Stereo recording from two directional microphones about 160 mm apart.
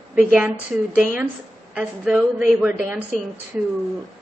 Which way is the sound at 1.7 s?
5° right (ahead or behind).